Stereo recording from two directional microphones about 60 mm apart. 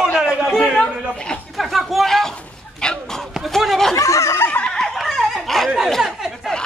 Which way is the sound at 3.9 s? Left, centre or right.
Left.